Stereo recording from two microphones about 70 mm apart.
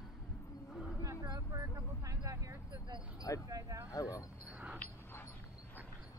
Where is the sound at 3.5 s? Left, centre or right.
Right.